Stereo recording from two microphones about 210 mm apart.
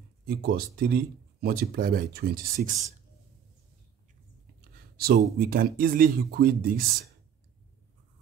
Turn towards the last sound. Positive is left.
turn(degrees=-45)  # may be behind; listen again after turning